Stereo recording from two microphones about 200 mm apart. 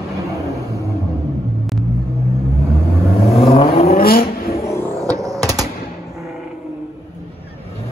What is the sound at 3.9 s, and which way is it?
Vehicle, 50° left (ahead or behind).